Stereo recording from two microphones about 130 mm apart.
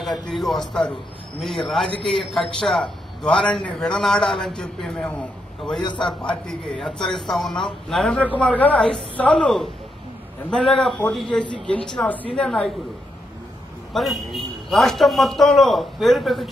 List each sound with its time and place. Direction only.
0.3 s a man's voice: 5° left (ahead or behind)
5.8 s a man's voice: 35° left (ahead or behind)
6.0 s a man's voice: 5° left (ahead or behind)
10.8 s a man's voice: 10° left (ahead or behind)
13.9 s a man's voice: centre (ahead or behind)